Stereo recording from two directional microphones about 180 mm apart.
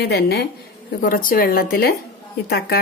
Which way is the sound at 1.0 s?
50° left (ahead or behind).